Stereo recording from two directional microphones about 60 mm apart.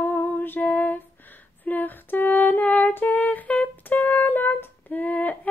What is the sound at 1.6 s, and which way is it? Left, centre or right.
Female singing, left.